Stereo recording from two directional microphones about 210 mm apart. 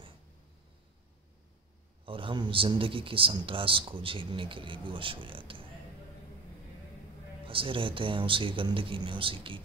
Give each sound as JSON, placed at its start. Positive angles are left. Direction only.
{"t": 2.0, "sound": "a man's voice", "side_deg": -25}
{"t": 7.4, "sound": "a man's voice", "side_deg": -25}